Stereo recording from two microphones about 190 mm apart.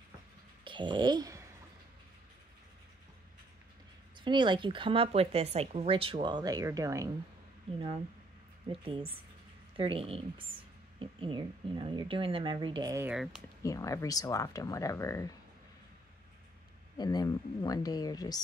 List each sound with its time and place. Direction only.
0.7 s a sound: 25° right (ahead or behind)
4.2 s speech: 25° right (ahead or behind)
8.8 s speech: 30° right (ahead or behind)
13.1 s speech: 5° right (ahead or behind)
13.6 s speech: 15° left (ahead or behind)
16.9 s speech: 20° left (ahead or behind)